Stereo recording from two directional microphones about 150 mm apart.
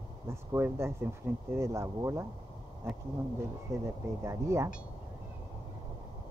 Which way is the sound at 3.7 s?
20° right (ahead or behind).